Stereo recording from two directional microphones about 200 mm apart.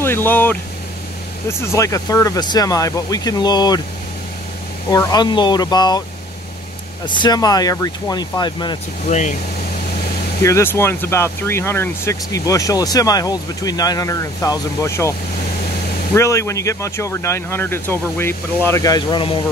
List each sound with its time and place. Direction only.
0.0 s speech: 10° left (ahead or behind)
4.8 s speech: 20° left (ahead or behind)
7.1 s speech: 20° left (ahead or behind)
9.0 s speech: 35° left (ahead or behind)
10.4 s speech: 15° left (ahead or behind)
16.2 s speech: 15° left (ahead or behind)